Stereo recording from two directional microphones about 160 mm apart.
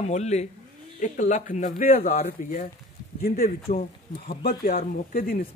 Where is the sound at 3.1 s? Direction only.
65° left (ahead or behind).